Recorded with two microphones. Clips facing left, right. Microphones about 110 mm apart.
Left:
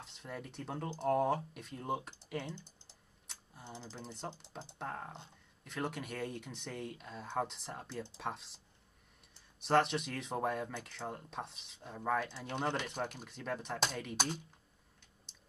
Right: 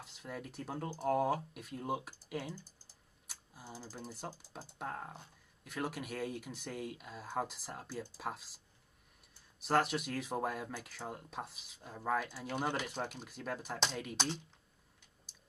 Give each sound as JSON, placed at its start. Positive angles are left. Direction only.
{"t": 0.0, "sound": "speech", "side_deg": -5}
{"t": 3.3, "sound": "typing", "side_deg": -5}
{"t": 4.2, "sound": "speech", "side_deg": 0}
{"t": 9.6, "sound": "speech", "side_deg": 0}
{"t": 15.3, "sound": "a sound", "side_deg": -5}